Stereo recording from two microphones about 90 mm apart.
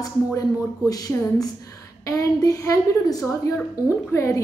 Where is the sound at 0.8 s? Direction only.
45° left (ahead or behind).